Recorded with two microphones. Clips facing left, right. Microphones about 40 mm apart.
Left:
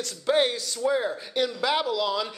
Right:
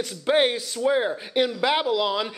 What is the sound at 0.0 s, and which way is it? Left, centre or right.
A man's voice, right.